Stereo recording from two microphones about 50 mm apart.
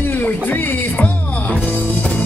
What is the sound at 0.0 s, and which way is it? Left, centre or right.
Music, left.